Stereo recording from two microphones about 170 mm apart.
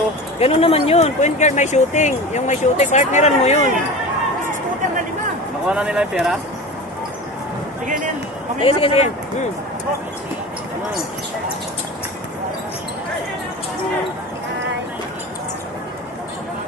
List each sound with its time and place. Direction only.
0.4 s speech: 35° left (ahead or behind)
5.7 s speech: 5° right (ahead or behind)
8.5 s speech: 30° left (ahead or behind)